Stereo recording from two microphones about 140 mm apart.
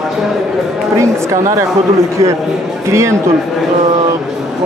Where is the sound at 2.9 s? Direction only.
20° right (ahead or behind).